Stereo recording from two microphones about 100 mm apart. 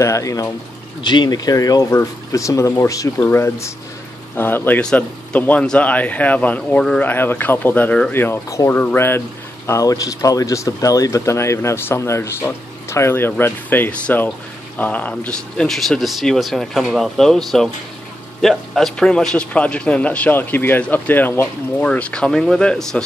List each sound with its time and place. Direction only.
0.0 s speech: 30° left (ahead or behind)
1.0 s a man's voice: 50° left (ahead or behind); by 9.2 s 25° left (ahead or behind)
9.7 s a man's voice: 35° left (ahead or behind); by 23.0 s 5° left (ahead or behind)